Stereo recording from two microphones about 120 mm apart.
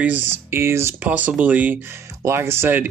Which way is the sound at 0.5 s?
20° right (ahead or behind).